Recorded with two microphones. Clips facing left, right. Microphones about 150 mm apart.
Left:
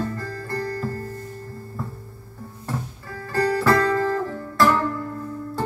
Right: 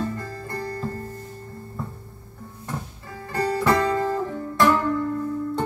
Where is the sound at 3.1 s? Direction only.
20° right (ahead or behind).